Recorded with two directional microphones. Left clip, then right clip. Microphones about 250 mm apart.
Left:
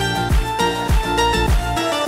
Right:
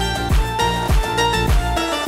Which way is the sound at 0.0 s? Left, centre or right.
Centre.